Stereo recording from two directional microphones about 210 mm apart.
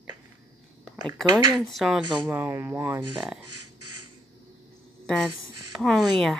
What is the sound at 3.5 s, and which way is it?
Beatboxing, 90° right.